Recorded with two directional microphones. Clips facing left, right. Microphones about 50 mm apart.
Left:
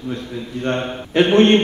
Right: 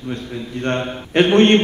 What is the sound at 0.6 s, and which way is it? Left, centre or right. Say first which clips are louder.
A man's voice: even; centre.